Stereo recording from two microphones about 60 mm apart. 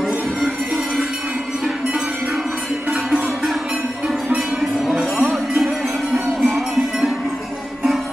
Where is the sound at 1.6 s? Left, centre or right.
Centre.